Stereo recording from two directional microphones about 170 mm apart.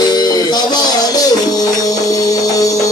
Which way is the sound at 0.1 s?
25° left (ahead or behind).